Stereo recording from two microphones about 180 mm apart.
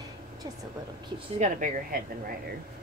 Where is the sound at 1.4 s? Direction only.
50° right (ahead or behind).